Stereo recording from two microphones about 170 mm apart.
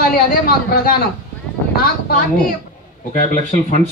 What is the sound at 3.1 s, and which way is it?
Speech, 45° left (ahead or behind).